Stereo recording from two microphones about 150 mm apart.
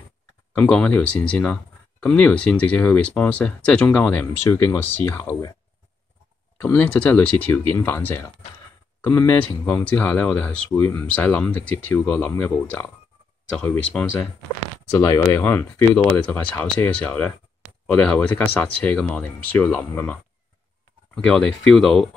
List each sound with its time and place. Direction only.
0.5 s speech: 5° left (ahead or behind)
6.6 s speech: 10° left (ahead or behind)
14.9 s speech: 20° left (ahead or behind); by 22.1 s centre (ahead or behind)